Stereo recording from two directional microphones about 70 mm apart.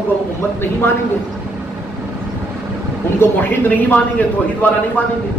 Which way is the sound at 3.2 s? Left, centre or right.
Left.